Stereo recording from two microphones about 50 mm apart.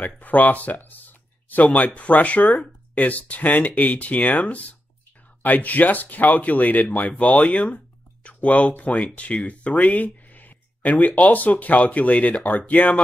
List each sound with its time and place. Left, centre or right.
0.0 s speech: left